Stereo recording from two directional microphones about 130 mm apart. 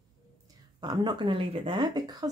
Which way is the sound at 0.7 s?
35° right (ahead or behind).